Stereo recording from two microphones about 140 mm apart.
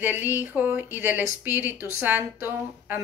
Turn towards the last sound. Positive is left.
turn(degrees=-15)  # may be behind; listen again after turning